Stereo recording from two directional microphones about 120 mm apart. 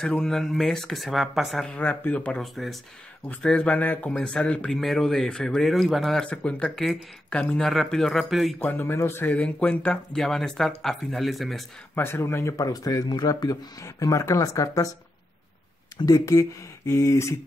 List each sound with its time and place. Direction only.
0.0 s speech: 5° left (ahead or behind)
8.6 s speech: 15° left (ahead or behind); by 11.6 s centre (ahead or behind)
11.9 s speech: 20° left (ahead or behind)
16.1 s speech: 25° left (ahead or behind)